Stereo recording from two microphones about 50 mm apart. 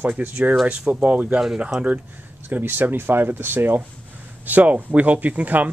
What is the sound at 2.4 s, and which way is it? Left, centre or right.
Speech, right.